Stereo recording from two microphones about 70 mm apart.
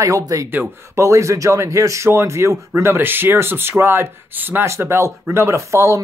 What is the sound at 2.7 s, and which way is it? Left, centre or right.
Speech, right.